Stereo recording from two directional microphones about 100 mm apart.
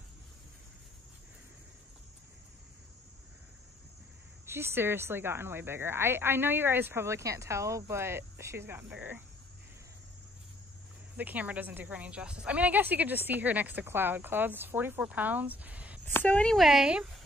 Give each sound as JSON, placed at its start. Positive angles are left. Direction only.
{"t": 4.5, "sound": "speech", "side_deg": -25}
{"t": 11.1, "sound": "speech", "side_deg": -15}
{"t": 16.1, "sound": "speech", "side_deg": 15}
{"t": 16.5, "sound": "speech", "side_deg": 0}